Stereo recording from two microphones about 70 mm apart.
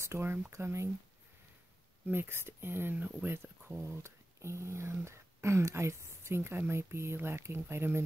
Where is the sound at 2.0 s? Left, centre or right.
Right.